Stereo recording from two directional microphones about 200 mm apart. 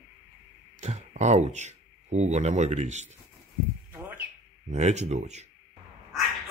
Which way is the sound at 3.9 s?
10° right (ahead or behind).